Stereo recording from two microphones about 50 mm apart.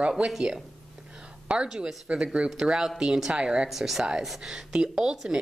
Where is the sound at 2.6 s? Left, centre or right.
Centre.